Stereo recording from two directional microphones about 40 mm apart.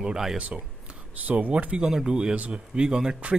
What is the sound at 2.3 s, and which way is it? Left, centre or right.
Speech, right.